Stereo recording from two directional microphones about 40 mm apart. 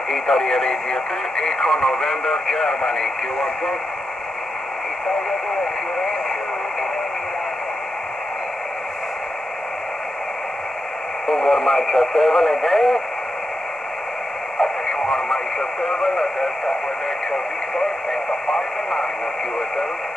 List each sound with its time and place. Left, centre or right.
0.1 s speech: centre
11.2 s speech: centre
14.6 s speech: centre
18.5 s speech: centre